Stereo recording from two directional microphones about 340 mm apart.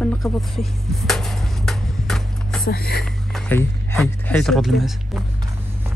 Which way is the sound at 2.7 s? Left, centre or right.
Left.